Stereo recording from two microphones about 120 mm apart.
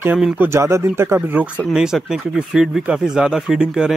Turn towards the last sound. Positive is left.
turn(degrees=-5)  # may be behind; listen again after turning